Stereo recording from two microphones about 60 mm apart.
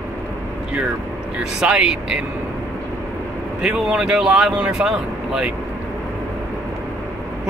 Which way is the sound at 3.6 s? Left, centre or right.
Centre.